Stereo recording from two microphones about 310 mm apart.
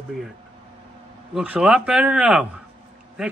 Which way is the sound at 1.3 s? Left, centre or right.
Centre.